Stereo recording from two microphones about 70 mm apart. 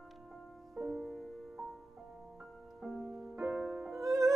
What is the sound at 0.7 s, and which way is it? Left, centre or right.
Music, centre.